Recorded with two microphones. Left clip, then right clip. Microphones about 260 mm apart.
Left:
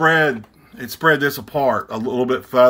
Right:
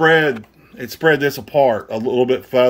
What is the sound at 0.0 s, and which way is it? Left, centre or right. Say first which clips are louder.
Speech: right 2 dB; centre.